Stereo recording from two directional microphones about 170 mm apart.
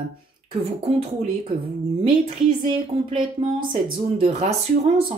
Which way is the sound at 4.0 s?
35° right (ahead or behind).